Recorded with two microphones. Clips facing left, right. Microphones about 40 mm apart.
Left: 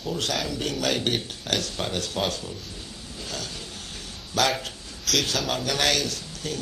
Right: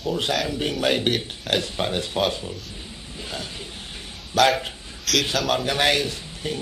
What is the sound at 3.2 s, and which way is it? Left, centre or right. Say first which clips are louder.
Mechanisms: right 2 dB; right.